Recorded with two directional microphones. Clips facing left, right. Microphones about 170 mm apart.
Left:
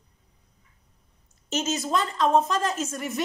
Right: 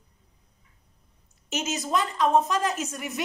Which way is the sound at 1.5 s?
15° right (ahead or behind).